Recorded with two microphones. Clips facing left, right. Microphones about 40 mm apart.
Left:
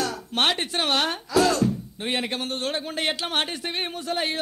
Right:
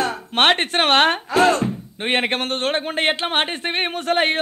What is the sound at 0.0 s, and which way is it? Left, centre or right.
Speech, right.